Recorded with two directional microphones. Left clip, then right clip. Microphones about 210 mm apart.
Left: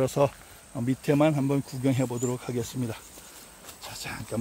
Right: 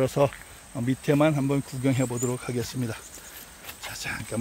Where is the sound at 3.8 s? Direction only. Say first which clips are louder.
Right 4 dB; 10° left (ahead or behind).